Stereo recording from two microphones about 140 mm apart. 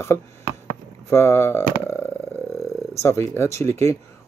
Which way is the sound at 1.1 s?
20° left (ahead or behind).